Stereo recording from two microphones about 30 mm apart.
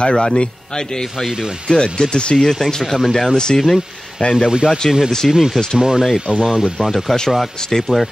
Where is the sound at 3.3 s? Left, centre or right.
Left.